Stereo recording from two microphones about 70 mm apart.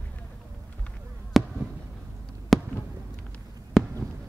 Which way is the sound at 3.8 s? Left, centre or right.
Centre.